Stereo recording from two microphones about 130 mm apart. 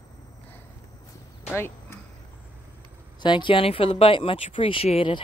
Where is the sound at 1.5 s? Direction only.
20° left (ahead or behind).